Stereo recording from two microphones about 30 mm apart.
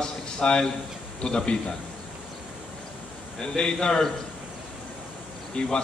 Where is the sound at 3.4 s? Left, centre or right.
Left.